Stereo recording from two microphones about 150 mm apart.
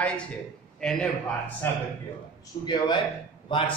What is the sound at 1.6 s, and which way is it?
Speech, 15° left (ahead or behind).